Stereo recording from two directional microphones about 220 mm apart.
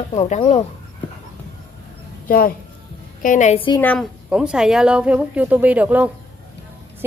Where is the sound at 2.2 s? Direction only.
40° left (ahead or behind); by 3.8 s 25° left (ahead or behind).